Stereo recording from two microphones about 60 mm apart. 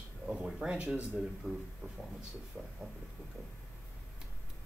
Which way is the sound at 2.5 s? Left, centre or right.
Centre.